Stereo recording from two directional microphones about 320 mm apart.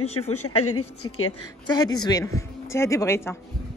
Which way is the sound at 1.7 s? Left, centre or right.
Centre.